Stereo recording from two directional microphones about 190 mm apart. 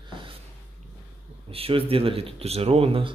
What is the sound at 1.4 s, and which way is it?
Speech, 30° right (ahead or behind).